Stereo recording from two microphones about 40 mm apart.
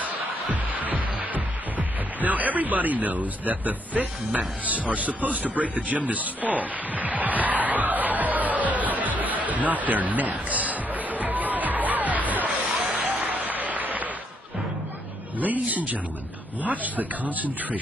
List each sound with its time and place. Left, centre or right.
0.0 s music: right
1.2 s speech: right
9.2 s music: right
12.9 s applause: right
15.3 s speech: right